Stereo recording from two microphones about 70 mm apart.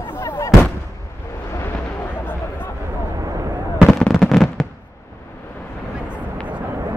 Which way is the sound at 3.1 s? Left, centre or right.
Right.